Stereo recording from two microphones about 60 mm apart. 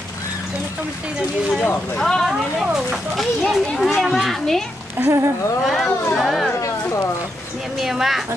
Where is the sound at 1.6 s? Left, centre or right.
Left.